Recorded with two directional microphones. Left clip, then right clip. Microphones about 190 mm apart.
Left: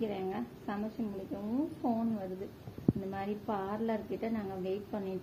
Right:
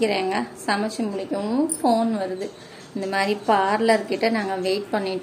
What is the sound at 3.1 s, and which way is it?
A woman's voice, 20° right (ahead or behind).